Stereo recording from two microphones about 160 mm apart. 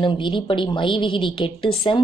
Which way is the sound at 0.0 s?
30° left (ahead or behind).